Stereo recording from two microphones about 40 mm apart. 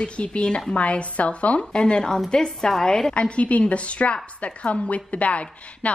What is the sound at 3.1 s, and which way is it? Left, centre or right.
A woman's voice, left.